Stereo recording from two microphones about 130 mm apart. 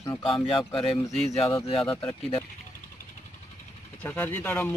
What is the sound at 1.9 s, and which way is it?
Speech, 15° left (ahead or behind).